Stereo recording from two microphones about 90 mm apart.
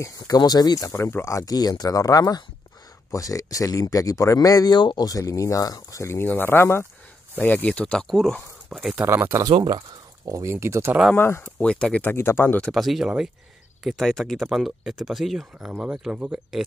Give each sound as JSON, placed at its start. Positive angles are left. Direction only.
{"t": 0.0, "sound": "speech", "side_deg": 40}
{"t": 0.4, "sound": "speech", "side_deg": 50}
{"t": 0.8, "sound": "speech", "side_deg": 30}
{"t": 8.9, "sound": "speech", "side_deg": -25}
{"t": 9.7, "sound": "a sound", "side_deg": -55}
{"t": 10.3, "sound": "speech", "side_deg": -30}
{"t": 11.1, "sound": "speech", "side_deg": 30}
{"t": 11.4, "sound": "speech", "side_deg": 10}
{"t": 12.0, "sound": "speech", "side_deg": 25}
{"t": 12.7, "sound": "speech", "side_deg": 0}